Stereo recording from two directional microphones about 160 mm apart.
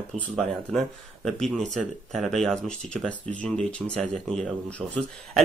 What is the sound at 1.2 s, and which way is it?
Speech, centre (ahead or behind).